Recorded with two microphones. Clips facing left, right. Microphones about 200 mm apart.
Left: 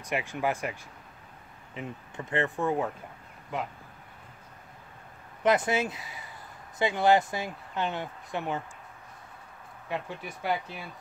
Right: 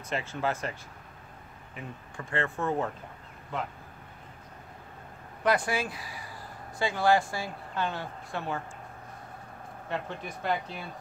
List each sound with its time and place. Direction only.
0.1 s speech: 15° left (ahead or behind)
1.8 s speech: 20° left (ahead or behind)
5.4 s speech: 20° left (ahead or behind)
9.8 s speech: 10° left (ahead or behind)